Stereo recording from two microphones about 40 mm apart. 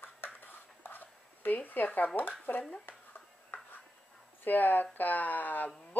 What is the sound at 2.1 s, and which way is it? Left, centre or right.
Speech, left.